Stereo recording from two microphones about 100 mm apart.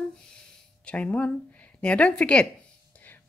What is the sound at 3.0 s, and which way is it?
Whispering, 15° left (ahead or behind).